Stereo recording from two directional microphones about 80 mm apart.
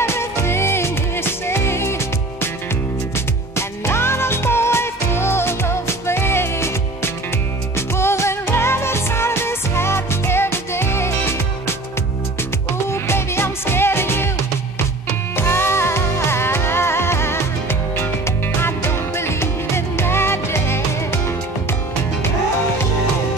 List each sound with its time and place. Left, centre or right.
0.0 s music: left
3.5 s music: left
12.9 s music: left
15.3 s music: left